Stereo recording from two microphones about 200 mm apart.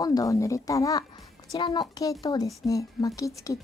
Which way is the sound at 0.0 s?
15° left (ahead or behind).